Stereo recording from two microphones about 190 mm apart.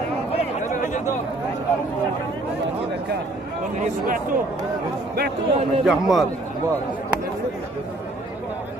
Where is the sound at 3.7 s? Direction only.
45° right (ahead or behind).